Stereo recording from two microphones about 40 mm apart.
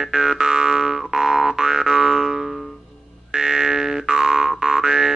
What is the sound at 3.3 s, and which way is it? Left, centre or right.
Music, centre.